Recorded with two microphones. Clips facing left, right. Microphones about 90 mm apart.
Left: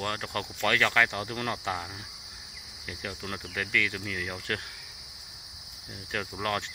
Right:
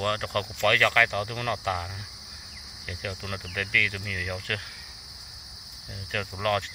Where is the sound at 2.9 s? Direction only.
15° left (ahead or behind).